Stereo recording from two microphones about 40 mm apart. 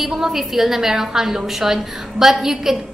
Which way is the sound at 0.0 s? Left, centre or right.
Centre.